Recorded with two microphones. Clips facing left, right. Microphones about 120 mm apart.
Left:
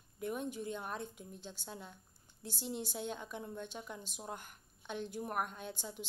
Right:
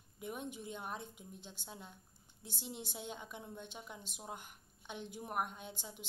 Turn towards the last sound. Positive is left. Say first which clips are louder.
# left 5 dB
turn(degrees=-20)  # may be behind; listen again after turning